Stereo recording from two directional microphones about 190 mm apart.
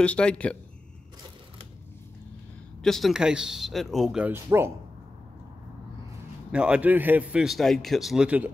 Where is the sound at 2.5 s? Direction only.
Centre (ahead or behind).